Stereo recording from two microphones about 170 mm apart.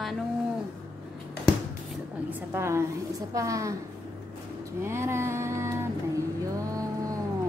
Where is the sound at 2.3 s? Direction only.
15° right (ahead or behind).